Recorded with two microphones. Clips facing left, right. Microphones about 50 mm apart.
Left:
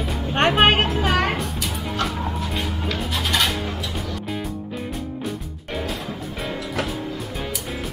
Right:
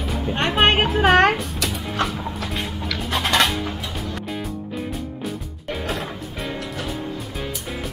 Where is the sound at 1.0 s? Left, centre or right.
Right.